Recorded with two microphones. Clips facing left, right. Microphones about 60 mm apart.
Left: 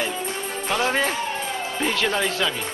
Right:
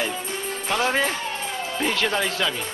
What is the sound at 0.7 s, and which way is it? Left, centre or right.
Speech, centre.